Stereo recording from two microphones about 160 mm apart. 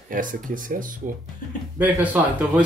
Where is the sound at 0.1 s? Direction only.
60° right (ahead or behind).